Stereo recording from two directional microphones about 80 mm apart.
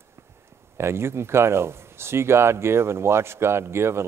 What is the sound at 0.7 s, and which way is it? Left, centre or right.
Speech, right.